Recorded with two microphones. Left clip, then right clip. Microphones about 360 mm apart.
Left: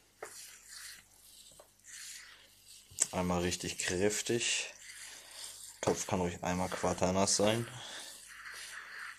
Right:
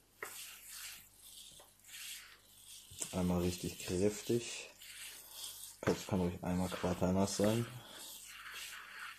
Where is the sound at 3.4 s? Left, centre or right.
Left.